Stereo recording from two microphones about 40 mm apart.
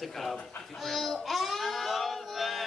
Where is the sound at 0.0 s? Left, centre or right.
Centre.